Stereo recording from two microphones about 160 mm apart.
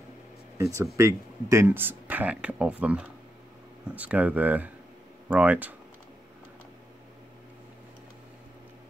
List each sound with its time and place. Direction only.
0.6 s speech: 20° right (ahead or behind)